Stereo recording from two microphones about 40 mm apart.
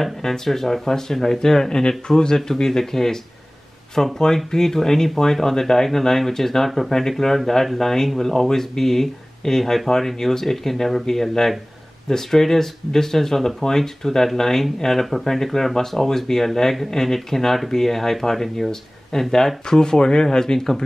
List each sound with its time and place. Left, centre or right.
0.0 s speech: centre